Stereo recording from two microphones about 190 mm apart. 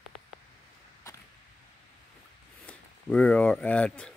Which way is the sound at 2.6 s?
5° left (ahead or behind).